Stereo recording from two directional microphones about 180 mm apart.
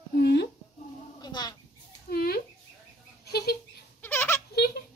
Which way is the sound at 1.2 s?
20° left (ahead or behind).